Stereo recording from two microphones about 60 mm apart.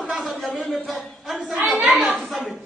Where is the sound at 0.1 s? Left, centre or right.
Centre.